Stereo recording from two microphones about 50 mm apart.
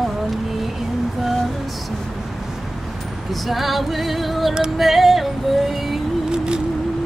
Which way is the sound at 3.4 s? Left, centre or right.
Centre.